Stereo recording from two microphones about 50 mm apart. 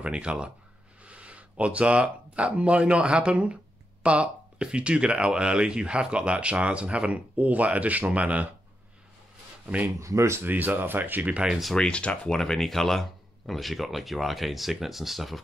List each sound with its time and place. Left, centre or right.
0.0 s speech: centre
9.9 s speech: right
10.4 s speech: right
11.7 s speech: centre
12.3 s speech: centre